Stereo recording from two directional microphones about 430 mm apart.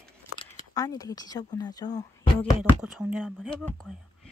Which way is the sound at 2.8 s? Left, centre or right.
Centre.